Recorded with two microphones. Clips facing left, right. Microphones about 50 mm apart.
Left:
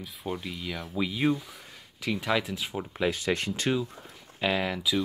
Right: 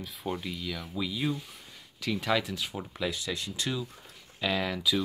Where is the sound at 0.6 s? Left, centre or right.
Left.